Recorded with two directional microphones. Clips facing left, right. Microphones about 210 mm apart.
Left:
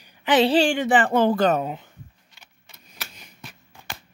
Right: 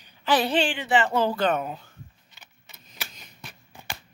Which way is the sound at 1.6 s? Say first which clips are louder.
Left 4 dB; 20° left (ahead or behind).